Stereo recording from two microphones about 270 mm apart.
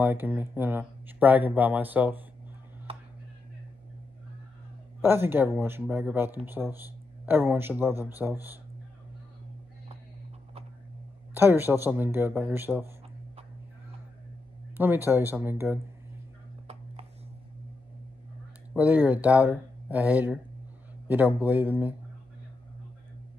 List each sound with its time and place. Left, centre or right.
0.0 s speech: centre
2.9 s a sound: right
5.0 s speech: centre
11.3 s speech: centre
14.8 s speech: centre
18.7 s speech: centre
21.4 s speech: centre